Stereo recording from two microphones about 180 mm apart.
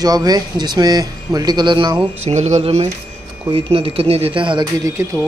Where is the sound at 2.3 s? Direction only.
40° right (ahead or behind).